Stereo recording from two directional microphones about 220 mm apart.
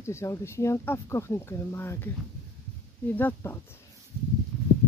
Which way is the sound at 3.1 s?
10° left (ahead or behind).